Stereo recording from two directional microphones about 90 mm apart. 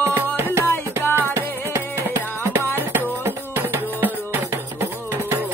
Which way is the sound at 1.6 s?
30° right (ahead or behind).